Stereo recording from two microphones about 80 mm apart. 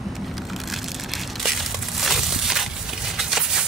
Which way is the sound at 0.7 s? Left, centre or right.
Centre.